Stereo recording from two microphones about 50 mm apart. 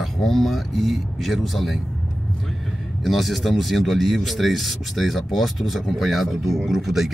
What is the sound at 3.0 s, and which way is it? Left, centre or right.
Speech, centre.